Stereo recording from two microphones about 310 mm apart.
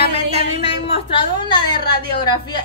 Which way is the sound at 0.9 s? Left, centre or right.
Centre.